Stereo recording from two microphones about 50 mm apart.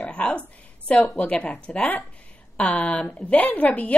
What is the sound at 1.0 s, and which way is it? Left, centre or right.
A woman's voice, left.